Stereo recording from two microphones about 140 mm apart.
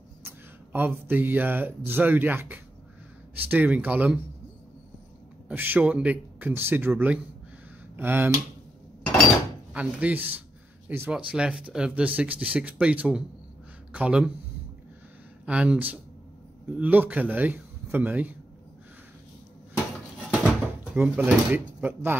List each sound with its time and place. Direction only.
0.7 s speech: 15° right (ahead or behind)
5.5 s speech: 15° right (ahead or behind)
9.8 s speech: 10° right (ahead or behind)
15.4 s speech: 10° right (ahead or behind)
20.4 s speech: 5° right (ahead or behind)